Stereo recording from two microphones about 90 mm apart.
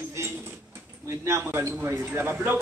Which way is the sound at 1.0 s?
30° right (ahead or behind).